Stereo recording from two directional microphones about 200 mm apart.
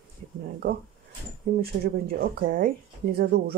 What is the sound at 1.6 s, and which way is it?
Speech, 50° right (ahead or behind).